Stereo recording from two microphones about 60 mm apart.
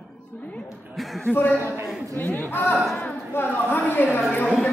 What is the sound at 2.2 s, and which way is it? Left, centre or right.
A woman's voice, left.